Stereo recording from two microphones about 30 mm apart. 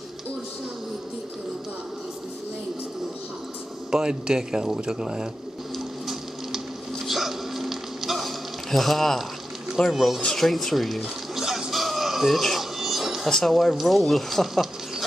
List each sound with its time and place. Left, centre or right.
3.9 s a man's voice: right
7.1 s music: centre
8.6 s speech: centre
9.8 s speech: left
10.3 s speech: centre
11.7 s a sound: centre
12.5 s music: centre
13.5 s speech: centre